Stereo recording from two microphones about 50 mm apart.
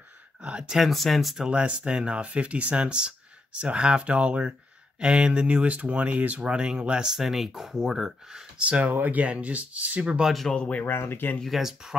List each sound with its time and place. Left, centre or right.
0.4 s speech: centre
0.8 s speech: centre
1.5 s speech: right
8.5 s speech: right
10.5 s speech: left
10.9 s speech: left
11.4 s speech: centre